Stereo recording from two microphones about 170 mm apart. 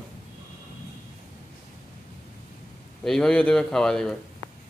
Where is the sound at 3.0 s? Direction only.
5° left (ahead or behind).